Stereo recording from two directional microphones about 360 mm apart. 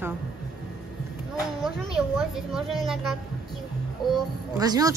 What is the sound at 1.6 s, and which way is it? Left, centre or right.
Speech, centre.